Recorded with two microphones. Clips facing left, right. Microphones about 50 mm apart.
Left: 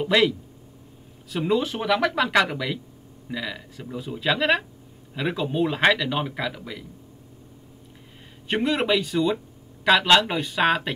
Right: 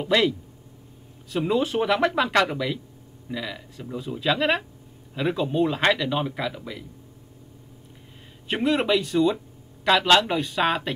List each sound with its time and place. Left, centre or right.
0.0 s speech: centre
1.3 s speech: centre
2.2 s speech: centre
8.5 s speech: centre